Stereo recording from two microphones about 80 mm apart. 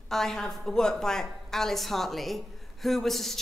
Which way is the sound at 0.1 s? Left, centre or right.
Centre.